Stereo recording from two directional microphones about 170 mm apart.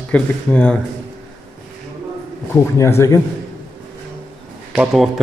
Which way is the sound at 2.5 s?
15° left (ahead or behind).